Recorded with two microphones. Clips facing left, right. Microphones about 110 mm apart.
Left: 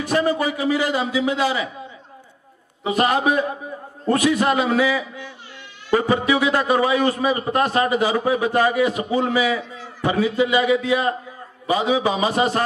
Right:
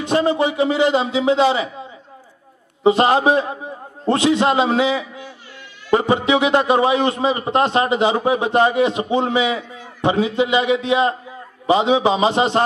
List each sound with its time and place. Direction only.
0.0 s a man's voice: 25° right (ahead or behind)
2.8 s a man's voice: 30° right (ahead or behind)